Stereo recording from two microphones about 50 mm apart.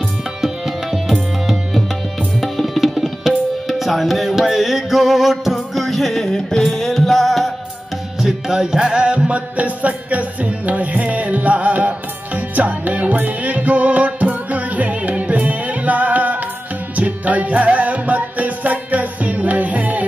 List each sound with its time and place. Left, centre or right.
0.4 s music: centre
2.4 s tabla: centre
8.2 s music: centre; by 20.1 s right